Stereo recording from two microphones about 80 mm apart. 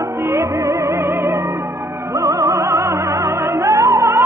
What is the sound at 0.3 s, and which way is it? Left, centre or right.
Music, right.